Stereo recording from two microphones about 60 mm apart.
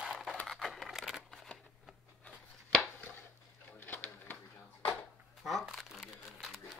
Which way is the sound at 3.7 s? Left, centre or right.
Left.